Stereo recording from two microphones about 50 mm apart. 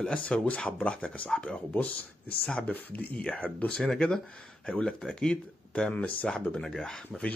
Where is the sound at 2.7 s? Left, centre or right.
Left.